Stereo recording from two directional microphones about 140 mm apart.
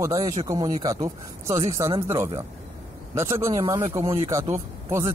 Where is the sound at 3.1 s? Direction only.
20° right (ahead or behind).